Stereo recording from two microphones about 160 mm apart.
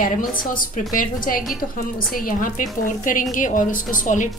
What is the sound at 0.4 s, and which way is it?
A woman's voice, 60° left (ahead or behind).